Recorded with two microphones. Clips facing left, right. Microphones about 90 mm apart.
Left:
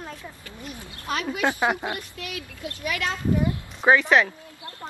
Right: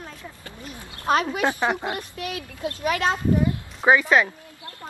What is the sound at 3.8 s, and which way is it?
Speech, 5° right (ahead or behind).